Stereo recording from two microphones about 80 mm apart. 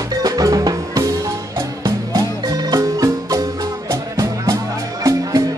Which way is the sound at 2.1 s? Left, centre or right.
Right.